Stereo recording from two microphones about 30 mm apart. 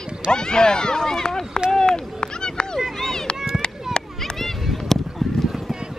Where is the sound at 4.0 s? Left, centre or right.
Left.